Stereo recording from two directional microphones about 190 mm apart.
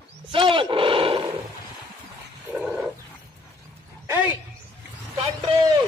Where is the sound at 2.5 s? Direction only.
5° right (ahead or behind).